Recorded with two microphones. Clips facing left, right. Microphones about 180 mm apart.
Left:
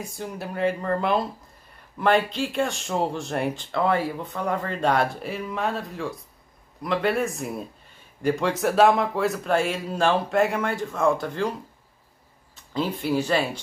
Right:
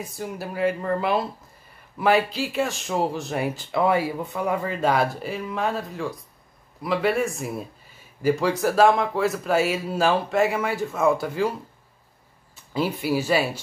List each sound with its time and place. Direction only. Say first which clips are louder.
0.0 s speech: right 1 dB; centre (ahead or behind)
12.7 s speech: right 1 dB; 10° right (ahead or behind)